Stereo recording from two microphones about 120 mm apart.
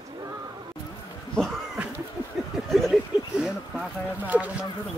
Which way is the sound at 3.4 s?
10° right (ahead or behind).